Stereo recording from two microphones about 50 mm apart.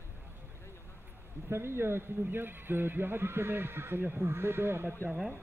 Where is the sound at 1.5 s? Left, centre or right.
Right.